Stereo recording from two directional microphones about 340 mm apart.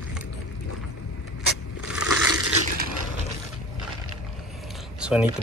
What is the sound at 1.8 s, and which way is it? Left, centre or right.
Crushing, left.